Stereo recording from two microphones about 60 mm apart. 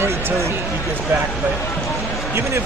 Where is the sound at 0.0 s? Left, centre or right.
Right.